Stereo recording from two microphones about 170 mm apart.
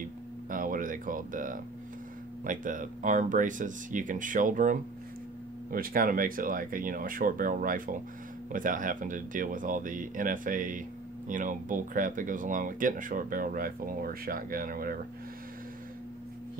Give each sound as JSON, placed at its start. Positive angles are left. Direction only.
{"t": 0.5, "sound": "speech", "side_deg": -55}